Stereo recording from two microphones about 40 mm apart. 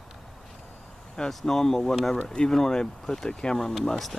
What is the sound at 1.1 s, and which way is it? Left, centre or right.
Speech, centre.